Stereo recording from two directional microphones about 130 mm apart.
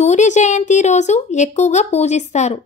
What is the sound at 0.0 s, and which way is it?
Speech, 65° left (ahead or behind).